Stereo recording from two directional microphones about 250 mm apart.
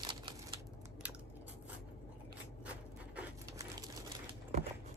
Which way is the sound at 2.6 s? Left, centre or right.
Centre.